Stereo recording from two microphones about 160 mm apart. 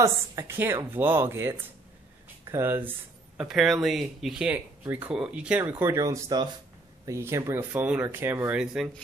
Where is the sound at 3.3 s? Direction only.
5° right (ahead or behind).